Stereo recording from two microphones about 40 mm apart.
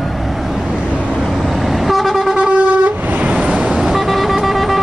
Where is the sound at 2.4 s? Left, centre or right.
Right.